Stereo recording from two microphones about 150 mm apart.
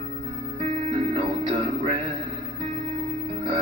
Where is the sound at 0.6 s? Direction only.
40° right (ahead or behind).